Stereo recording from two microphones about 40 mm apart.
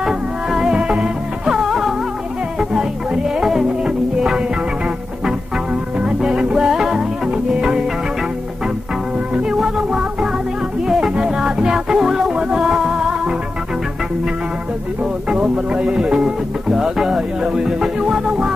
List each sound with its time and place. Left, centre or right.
0.0 s music: centre
0.7 s music: right
1.5 s music: centre
6.2 s music: right
9.3 s music: right
9.6 s music: centre
15.3 s music: right